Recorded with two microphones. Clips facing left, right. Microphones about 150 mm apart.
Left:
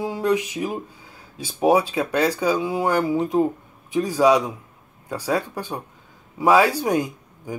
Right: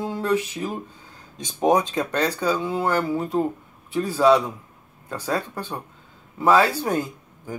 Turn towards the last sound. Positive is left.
turn(degrees=15)  # may be behind; listen again after turning